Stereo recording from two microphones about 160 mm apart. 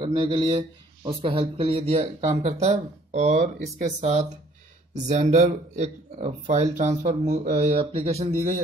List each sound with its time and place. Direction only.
0.0 s speech: 35° right (ahead or behind)
3.3 s speech: 80° right
4.0 s speech: 45° right (ahead or behind)